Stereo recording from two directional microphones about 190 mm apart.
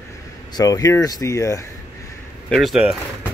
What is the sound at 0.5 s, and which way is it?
Speech, 20° left (ahead or behind).